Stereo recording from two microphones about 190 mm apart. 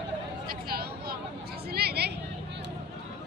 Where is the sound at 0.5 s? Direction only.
55° right (ahead or behind).